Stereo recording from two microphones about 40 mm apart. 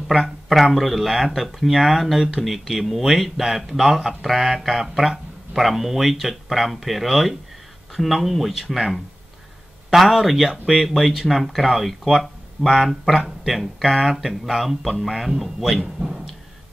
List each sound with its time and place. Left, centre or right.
0.2 s speech: centre
9.9 s speech: centre
16.0 s speech: right